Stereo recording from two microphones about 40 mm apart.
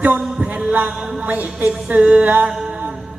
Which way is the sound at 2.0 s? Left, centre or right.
Right.